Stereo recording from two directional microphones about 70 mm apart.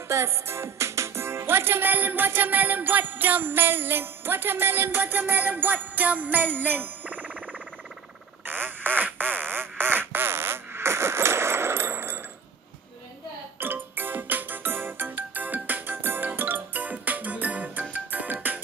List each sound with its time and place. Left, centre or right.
0.1 s music: right
8.5 s quack: right
13.6 s music: right